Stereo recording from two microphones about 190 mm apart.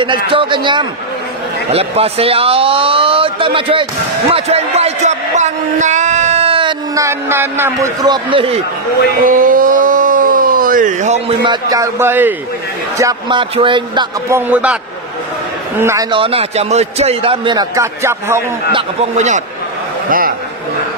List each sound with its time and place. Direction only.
0.3 s a man's voice: 25° right (ahead or behind)
7.0 s a man's voice: 15° right (ahead or behind)
9.2 s a sound: 45° right (ahead or behind)
11.4 s a man's voice: 20° right (ahead or behind)
14.3 s a man's voice: 10° right (ahead or behind)
15.8 s a man's voice: 15° right (ahead or behind)
16.1 s a man's voice: 30° right (ahead or behind)
18.7 s a man's voice: 30° right (ahead or behind)
20.1 s a man's voice: 50° right (ahead or behind)